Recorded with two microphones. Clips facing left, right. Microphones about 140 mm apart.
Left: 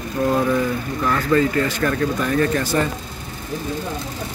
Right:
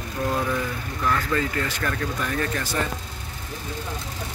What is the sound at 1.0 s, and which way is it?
Speech, 40° left (ahead or behind).